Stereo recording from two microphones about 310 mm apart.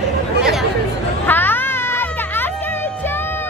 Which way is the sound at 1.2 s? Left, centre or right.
Centre.